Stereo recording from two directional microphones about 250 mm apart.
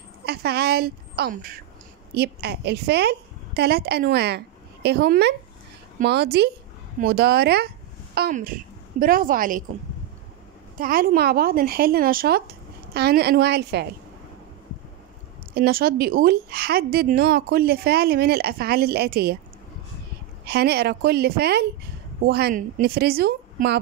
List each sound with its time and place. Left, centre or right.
0.2 s a woman's voice: right
10.8 s a woman's voice: right
15.5 s a woman's voice: right
20.4 s a woman's voice: right